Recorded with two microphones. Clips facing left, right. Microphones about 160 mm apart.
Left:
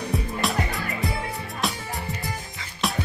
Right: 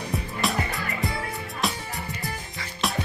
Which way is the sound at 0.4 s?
Centre (ahead or behind).